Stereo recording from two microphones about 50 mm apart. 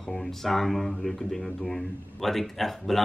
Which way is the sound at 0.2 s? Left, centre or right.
Centre.